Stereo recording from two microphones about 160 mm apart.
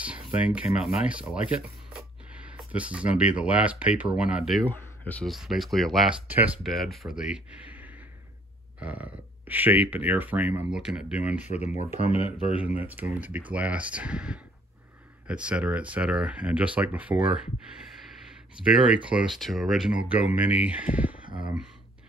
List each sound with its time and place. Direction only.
0.0 s speech: 10° right (ahead or behind)
4.6 s speech: 10° left (ahead or behind)
6.2 s speech: 10° right (ahead or behind)
11.4 s speech: 45° left (ahead or behind)
12.3 s speech: 10° right (ahead or behind)
18.6 s speech: 5° right (ahead or behind)